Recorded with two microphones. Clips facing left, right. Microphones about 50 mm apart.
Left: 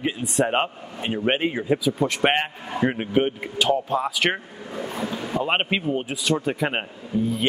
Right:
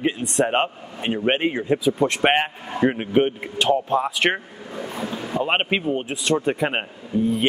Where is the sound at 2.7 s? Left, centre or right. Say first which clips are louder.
Right 2 dB; centre.